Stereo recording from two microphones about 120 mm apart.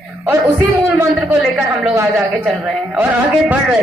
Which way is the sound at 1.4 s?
5° right (ahead or behind).